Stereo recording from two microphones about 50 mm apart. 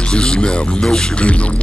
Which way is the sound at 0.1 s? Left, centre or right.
Centre.